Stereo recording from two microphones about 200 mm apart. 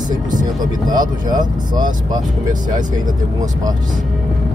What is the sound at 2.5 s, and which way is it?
Speech, 40° right (ahead or behind).